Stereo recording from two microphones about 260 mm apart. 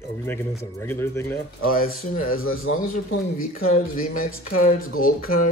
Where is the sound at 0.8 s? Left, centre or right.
Centre.